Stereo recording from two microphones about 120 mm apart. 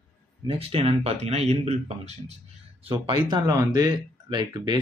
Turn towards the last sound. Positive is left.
turn(degrees=-40)  # may be behind; listen again after turning